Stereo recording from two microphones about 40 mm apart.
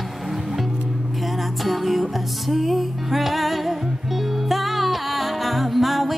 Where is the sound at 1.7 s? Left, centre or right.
Centre.